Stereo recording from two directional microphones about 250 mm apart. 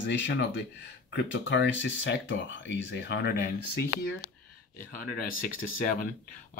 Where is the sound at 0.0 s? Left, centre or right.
Left.